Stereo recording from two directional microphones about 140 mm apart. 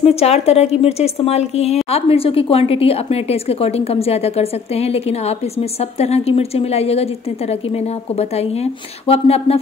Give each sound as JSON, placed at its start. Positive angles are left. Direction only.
{"t": 0.0, "sound": "a woman's voice", "side_deg": 45}
{"t": 9.0, "sound": "a woman's voice", "side_deg": 45}